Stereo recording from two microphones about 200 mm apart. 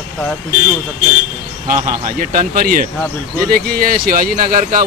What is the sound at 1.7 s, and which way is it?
Speech, 45° right (ahead or behind).